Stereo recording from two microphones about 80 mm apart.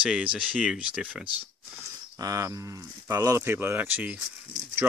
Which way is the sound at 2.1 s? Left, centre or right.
Right.